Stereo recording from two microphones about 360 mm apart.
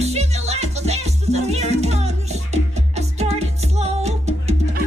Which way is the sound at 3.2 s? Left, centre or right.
Centre.